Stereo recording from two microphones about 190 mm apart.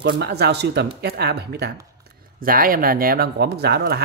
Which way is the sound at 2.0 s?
50° right (ahead or behind).